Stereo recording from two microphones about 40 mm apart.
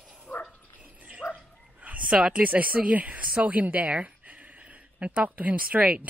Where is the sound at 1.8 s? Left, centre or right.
Right.